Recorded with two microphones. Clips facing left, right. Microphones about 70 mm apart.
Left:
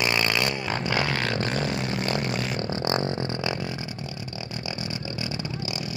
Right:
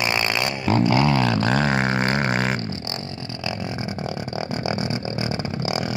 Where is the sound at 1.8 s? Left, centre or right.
Right.